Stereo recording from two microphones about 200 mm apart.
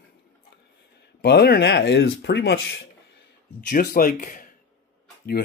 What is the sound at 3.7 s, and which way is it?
Speech, 45° left (ahead or behind).